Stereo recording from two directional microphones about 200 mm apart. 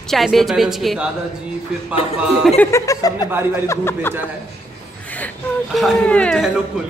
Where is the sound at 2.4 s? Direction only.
5° left (ahead or behind).